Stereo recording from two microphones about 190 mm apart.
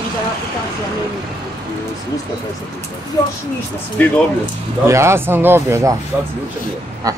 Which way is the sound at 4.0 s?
10° left (ahead or behind).